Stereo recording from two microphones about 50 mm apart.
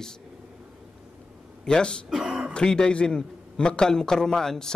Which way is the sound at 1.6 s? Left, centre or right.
Centre.